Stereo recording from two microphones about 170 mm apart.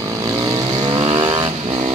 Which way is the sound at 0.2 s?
20° right (ahead or behind).